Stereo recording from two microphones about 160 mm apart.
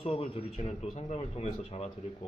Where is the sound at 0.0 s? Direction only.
35° left (ahead or behind).